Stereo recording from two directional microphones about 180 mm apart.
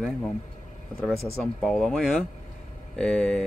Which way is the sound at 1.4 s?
Centre (ahead or behind).